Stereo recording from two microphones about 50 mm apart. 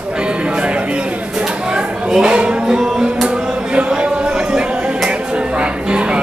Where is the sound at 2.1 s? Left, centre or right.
Right.